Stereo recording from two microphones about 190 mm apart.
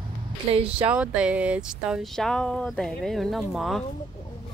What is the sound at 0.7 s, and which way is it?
Speech, 5° right (ahead or behind).